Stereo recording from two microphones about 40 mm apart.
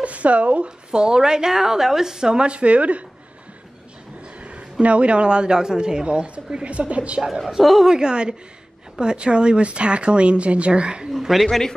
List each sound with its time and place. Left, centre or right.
0.0 s speech: right
0.7 s a woman's voice: right
4.2 s a man's voice: right
7.4 s a woman's voice: centre
7.9 s speech: right
11.1 s a woman's voice: centre